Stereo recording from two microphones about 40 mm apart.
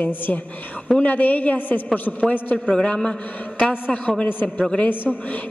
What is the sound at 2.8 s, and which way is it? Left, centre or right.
Speech, left.